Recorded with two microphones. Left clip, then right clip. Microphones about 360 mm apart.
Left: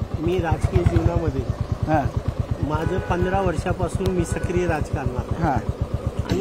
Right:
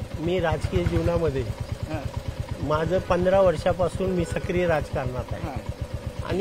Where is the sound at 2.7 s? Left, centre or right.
Right.